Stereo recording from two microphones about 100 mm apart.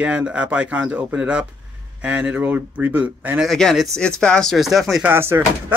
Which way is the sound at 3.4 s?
5° left (ahead or behind).